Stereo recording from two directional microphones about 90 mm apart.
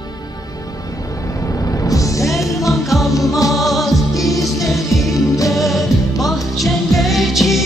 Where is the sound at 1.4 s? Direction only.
35° left (ahead or behind).